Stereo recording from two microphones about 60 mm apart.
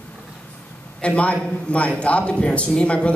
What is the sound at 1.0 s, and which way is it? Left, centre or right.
A man's voice, left.